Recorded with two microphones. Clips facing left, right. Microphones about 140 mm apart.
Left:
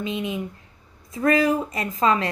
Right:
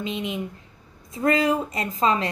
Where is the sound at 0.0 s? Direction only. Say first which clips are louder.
Left 1 dB; 20° right (ahead or behind).